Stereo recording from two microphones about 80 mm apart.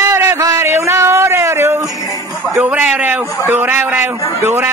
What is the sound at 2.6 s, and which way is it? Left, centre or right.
Speech, centre.